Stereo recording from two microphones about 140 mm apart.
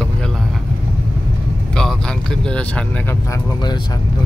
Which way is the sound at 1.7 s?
5° left (ahead or behind).